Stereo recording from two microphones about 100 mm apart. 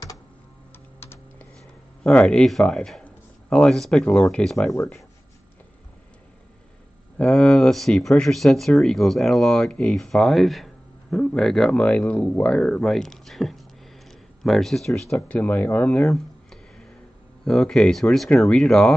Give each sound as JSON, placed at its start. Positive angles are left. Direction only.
{"t": 0.9, "sound": "typing", "side_deg": 25}
{"t": 2.0, "sound": "speech", "side_deg": 10}
{"t": 7.2, "sound": "speech", "side_deg": 5}
{"t": 14.0, "sound": "a sound", "side_deg": 0}
{"t": 15.1, "sound": "speech", "side_deg": 15}
{"t": 16.0, "sound": "a sound", "side_deg": 5}
{"t": 17.5, "sound": "speech", "side_deg": 5}